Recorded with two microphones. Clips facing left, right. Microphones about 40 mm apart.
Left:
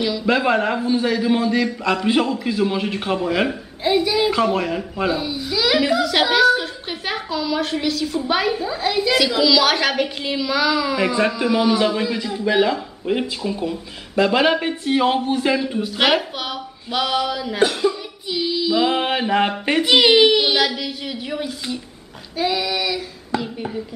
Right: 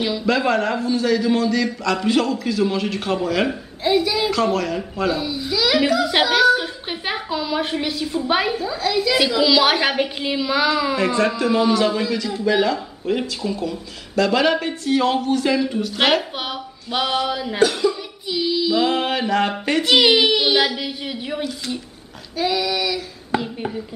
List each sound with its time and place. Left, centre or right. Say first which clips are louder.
0.2 s a man's voice: left 1 dB; centre
6.3 s a sound: left 1 dB; centre
8.3 s a woman's voice: even; centre
8.5 s a man's voice: even; centre
9.4 s a woman's voice: right 1 dB; centre
11.1 s a man's voice: right 1 dB; centre
16.4 s a woman's voice: even; centre
17.6 s a man's voice: even; centre
18.3 s a man's voice: even; centre
19.9 s speech: left 2 dB; centre
22.4 s a man's voice: even; centre